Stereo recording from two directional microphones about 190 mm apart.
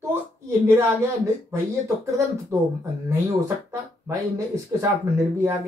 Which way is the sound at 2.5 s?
15° right (ahead or behind).